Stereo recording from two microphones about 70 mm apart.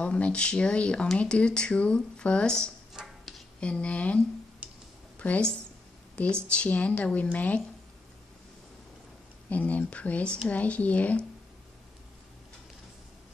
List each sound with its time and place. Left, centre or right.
0.0 s speech: centre
2.9 s a sound: centre
3.6 s speech: centre
4.6 s a sound: centre
5.2 s speech: centre
9.5 s speech: left